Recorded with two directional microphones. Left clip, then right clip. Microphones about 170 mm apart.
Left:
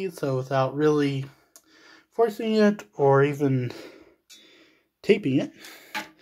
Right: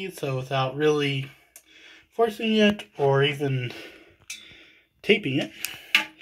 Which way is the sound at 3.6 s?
25° left (ahead or behind).